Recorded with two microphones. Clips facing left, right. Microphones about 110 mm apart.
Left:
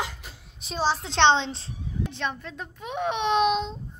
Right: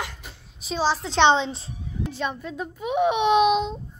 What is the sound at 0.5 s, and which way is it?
A woman's voice, centre (ahead or behind).